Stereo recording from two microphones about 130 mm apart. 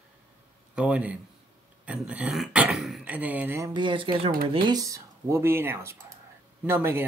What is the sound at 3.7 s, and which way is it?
Speech, 40° right (ahead or behind).